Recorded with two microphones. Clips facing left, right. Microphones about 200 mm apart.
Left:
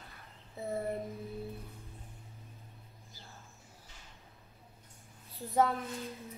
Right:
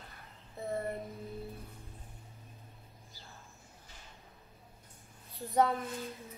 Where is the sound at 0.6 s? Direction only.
Centre (ahead or behind).